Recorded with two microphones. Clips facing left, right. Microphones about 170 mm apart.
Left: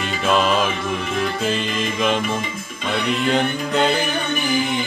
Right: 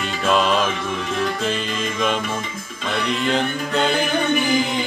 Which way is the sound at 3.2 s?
Centre (ahead or behind).